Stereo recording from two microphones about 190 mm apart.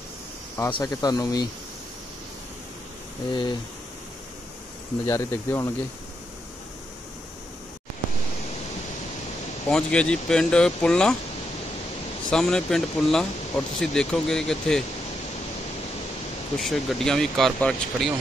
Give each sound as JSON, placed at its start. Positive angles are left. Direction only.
{"t": 0.7, "sound": "speech", "side_deg": 25}
{"t": 3.3, "sound": "speech", "side_deg": 25}
{"t": 5.0, "sound": "speech", "side_deg": 15}
{"t": 9.7, "sound": "speech", "side_deg": 5}
{"t": 12.3, "sound": "speech", "side_deg": 5}
{"t": 16.5, "sound": "speech", "side_deg": 0}